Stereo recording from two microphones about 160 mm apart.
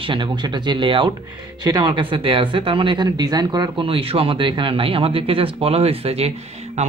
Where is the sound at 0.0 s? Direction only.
30° right (ahead or behind).